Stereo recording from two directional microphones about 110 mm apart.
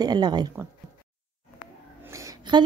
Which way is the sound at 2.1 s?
30° right (ahead or behind).